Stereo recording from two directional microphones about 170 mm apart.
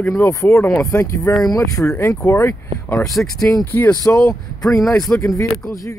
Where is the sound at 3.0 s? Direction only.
Centre (ahead or behind).